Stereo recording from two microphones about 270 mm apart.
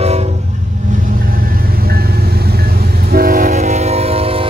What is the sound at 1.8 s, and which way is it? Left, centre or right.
Vehicle, right.